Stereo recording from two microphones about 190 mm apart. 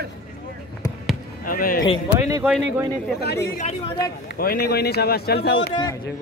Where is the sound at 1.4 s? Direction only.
50° left (ahead or behind).